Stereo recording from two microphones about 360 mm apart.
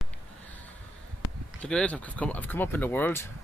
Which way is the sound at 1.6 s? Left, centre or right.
Centre.